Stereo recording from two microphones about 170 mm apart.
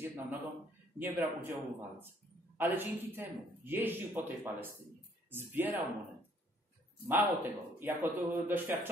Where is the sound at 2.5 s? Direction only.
10° right (ahead or behind).